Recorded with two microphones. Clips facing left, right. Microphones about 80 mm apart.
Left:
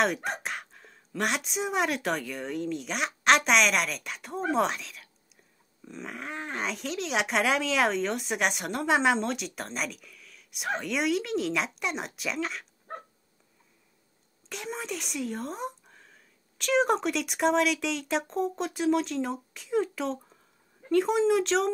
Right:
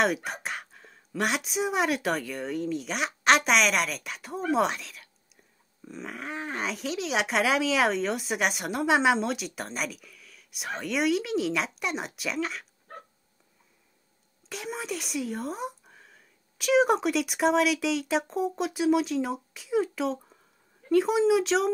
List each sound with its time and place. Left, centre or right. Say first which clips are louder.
0.0 s speech: right 1 dB; centre
12.9 s dog: left 4 dB; left
14.5 s speech: right 1 dB; centre